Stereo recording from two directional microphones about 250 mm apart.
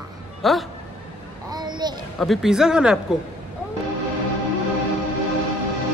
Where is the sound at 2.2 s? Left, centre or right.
Centre.